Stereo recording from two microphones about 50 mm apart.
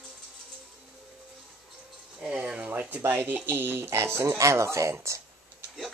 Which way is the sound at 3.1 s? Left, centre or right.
Right.